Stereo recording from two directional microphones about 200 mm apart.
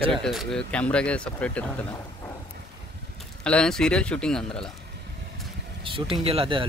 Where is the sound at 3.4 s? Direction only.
5° left (ahead or behind).